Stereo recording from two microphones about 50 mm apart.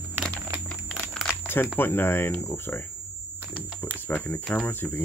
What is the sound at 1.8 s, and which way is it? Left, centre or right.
Speech, left.